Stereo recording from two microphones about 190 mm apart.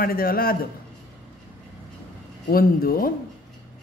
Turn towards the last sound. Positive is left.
turn(degrees=50)  # may be behind; listen again after turning